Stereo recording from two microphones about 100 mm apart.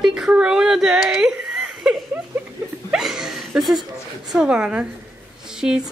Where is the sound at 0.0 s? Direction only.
5° right (ahead or behind).